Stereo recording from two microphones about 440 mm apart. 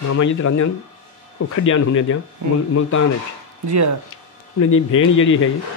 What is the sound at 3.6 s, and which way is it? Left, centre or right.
Speech, right.